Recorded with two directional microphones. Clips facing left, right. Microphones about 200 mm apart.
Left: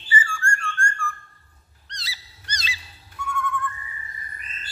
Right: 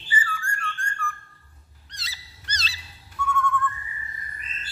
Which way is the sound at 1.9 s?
5° right (ahead or behind).